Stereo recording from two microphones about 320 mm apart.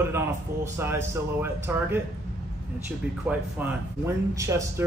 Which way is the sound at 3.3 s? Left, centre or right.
Centre.